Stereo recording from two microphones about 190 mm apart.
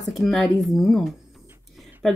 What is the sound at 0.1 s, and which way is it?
Speech, centre (ahead or behind).